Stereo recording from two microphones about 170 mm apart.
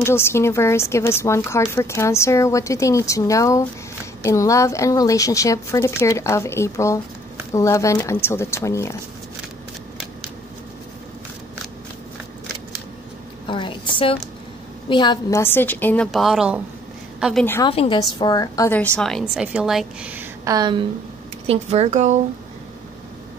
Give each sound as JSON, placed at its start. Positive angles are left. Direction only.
{"t": 0.0, "sound": "speech", "side_deg": 15}
{"t": 13.5, "sound": "a sound", "side_deg": 30}
{"t": 14.9, "sound": "speech", "side_deg": 25}
{"t": 16.1, "sound": "a woman's voice", "side_deg": 0}
{"t": 17.6, "sound": "a woman's voice", "side_deg": 30}
{"t": 18.7, "sound": "a woman's voice", "side_deg": 5}
{"t": 20.4, "sound": "a woman's voice", "side_deg": -25}
{"t": 21.5, "sound": "speech", "side_deg": -40}